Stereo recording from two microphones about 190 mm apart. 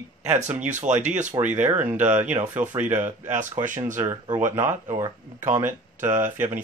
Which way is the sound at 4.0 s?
15° right (ahead or behind).